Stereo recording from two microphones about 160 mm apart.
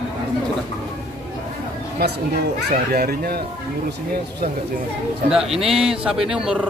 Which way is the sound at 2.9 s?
75° right (ahead or behind).